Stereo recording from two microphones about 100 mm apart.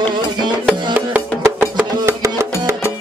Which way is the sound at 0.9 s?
15° right (ahead or behind).